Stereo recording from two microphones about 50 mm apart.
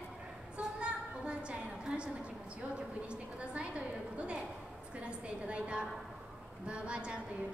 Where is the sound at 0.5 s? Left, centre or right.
Right.